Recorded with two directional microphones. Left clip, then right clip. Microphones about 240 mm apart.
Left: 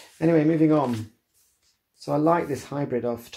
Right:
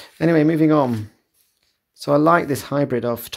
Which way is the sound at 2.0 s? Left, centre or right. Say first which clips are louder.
Right 7 dB; right.